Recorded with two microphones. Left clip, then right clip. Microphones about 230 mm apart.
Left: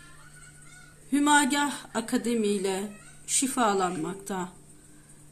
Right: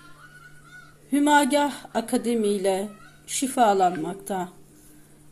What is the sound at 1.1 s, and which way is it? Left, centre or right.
Speech, centre.